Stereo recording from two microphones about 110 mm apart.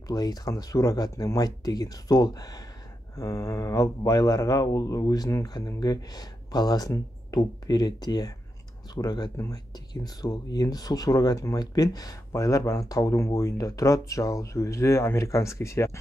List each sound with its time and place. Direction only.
0.1 s speech: 35° left (ahead or behind)